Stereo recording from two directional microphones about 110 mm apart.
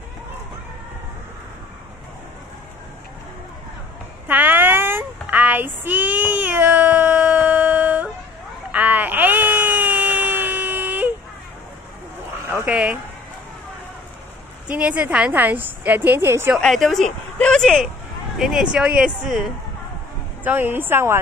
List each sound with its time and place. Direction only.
4.3 s child singing: 15° right (ahead or behind)
8.7 s a sound: 15° right (ahead or behind)
12.4 s dog: 20° right (ahead or behind)
12.7 s a woman's voice: 10° right (ahead or behind)
14.7 s a woman's voice: 10° right (ahead or behind)
16.5 s speech: centre (ahead or behind)
18.4 s speech: 5° right (ahead or behind)
20.4 s speech: 15° right (ahead or behind)